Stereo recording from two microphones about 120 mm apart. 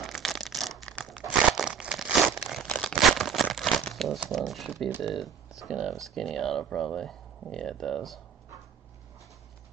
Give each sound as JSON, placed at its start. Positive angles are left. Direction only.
{"t": 0.0, "sound": "a sound", "side_deg": 0}
{"t": 1.0, "sound": "crumpling", "side_deg": 5}
{"t": 1.5, "sound": "crumpling", "side_deg": -5}
{"t": 2.6, "sound": "a sound", "side_deg": 5}
{"t": 3.4, "sound": "crumpling", "side_deg": 0}
{"t": 5.0, "sound": "speech", "side_deg": 0}